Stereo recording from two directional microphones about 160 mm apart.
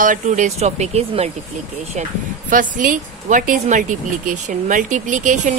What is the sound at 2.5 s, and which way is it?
Speech, 55° right (ahead or behind).